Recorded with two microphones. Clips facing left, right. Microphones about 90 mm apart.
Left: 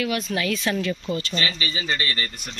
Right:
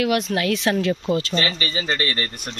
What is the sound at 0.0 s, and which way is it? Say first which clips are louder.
Speech: right 4 dB; 70° right (ahead or behind).